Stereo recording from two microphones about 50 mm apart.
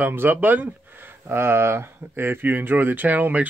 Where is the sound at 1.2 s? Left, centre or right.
Right.